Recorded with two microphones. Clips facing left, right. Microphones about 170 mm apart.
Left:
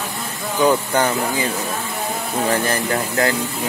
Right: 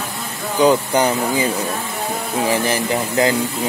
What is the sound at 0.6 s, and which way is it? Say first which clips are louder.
Speech: right 2 dB; 20° right (ahead or behind).